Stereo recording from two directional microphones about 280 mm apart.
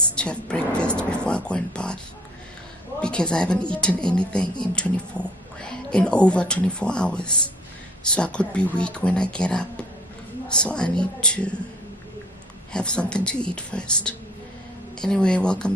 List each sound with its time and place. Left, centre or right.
0.0 s a sound: centre
3.0 s speech: centre
12.7 s speech: centre